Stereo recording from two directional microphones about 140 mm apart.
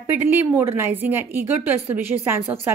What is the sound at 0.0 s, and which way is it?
A woman's voice, 15° right (ahead or behind).